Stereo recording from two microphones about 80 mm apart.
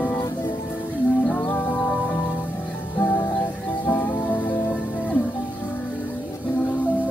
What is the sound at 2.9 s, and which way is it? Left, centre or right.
Music, left.